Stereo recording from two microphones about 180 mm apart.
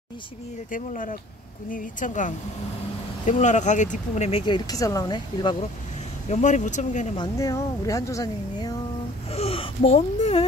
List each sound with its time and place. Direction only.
0.7 s speech: 50° left (ahead or behind); by 5.7 s 25° left (ahead or behind)
6.2 s speech: 40° left (ahead or behind)
7.2 s speech: 20° left (ahead or behind)
9.3 s gasp: 35° left (ahead or behind)